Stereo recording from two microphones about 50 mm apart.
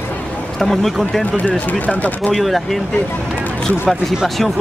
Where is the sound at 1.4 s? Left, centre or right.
Left.